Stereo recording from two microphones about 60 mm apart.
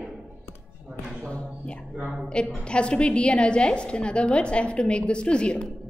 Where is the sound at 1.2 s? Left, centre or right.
Centre.